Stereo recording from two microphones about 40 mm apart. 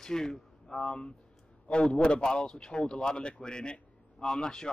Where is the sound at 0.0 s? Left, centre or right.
Centre.